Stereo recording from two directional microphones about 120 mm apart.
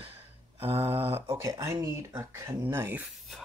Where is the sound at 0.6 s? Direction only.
20° right (ahead or behind).